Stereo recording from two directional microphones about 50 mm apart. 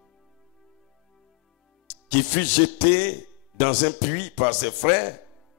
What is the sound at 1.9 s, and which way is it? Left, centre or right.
A man's voice, left.